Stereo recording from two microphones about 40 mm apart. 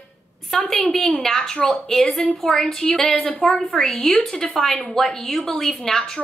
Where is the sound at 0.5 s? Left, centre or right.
Centre.